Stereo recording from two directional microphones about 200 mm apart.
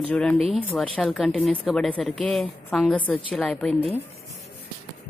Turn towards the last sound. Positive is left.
turn(degrees=5)  # may be behind; listen again after turning